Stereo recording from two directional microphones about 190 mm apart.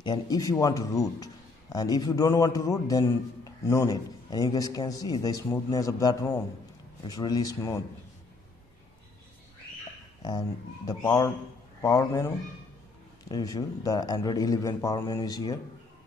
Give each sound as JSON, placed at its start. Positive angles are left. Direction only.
{"t": 0.0, "sound": "a man's voice", "side_deg": 20}
{"t": 10.9, "sound": "a man's voice", "side_deg": 20}
{"t": 13.3, "sound": "a man's voice", "side_deg": 20}